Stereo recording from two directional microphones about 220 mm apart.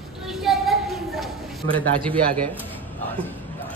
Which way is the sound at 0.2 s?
Centre (ahead or behind).